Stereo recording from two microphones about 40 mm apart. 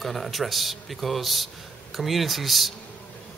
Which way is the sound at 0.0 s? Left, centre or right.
Centre.